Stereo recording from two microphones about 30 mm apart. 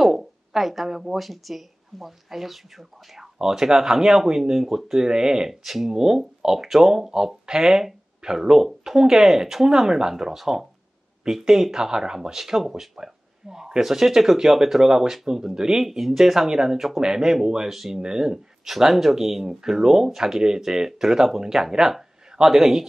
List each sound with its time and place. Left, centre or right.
0.0 s a sound: centre
1.1 s speech: centre
3.3 s speech: centre
5.1 s speech: right
5.5 s speech: centre
8.5 s speech: centre
8.9 s speech: centre
10.3 s speech: centre
17.0 s speech: right
17.6 s speech: centre
18.0 s speech: right
18.7 s speech: centre